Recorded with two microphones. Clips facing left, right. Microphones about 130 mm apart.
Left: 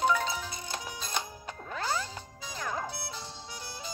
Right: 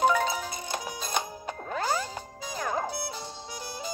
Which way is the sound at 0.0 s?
60° right (ahead or behind).